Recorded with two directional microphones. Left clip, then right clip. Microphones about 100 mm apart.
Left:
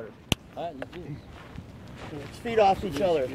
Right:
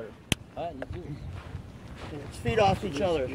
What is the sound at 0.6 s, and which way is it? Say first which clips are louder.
Speech: left 1 dB; 10° left (ahead or behind).